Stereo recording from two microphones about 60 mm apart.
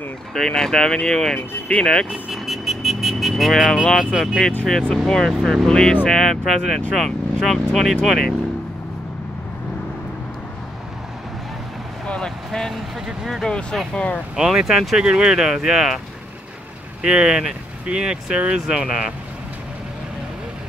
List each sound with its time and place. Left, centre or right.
0.3 s speech: centre
2.3 s vehicle: centre
4.0 s speech: centre
5.0 s speech: centre
5.3 s speech: centre
5.7 s speech: centre
12.4 s vehicle: centre
13.4 s speech: centre
14.3 s speech: centre
17.0 s speech: centre